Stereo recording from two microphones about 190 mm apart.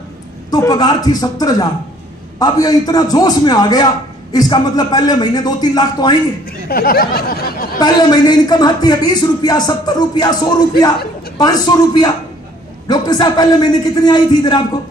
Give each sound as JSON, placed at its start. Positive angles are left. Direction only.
{"t": 0.5, "sound": "a man's voice", "side_deg": 20}
{"t": 6.7, "sound": "speech", "side_deg": 50}
{"t": 7.8, "sound": "a man's voice", "side_deg": 20}
{"t": 11.3, "sound": "a man's voice", "side_deg": 20}